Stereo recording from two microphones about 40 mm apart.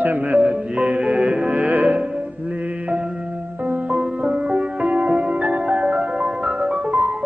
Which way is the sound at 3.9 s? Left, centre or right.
Right.